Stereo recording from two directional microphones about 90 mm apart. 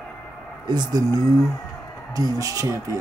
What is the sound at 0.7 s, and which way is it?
Speech, 50° right (ahead or behind).